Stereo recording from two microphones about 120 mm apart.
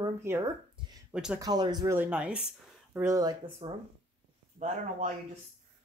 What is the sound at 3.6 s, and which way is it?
Speech, 55° right (ahead or behind).